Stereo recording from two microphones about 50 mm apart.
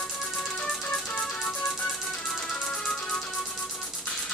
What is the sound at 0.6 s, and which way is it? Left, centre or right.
Music, left.